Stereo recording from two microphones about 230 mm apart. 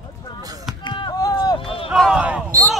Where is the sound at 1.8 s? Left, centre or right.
Centre.